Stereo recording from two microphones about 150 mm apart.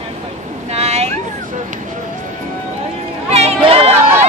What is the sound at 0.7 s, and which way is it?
Cat, 45° right (ahead or behind).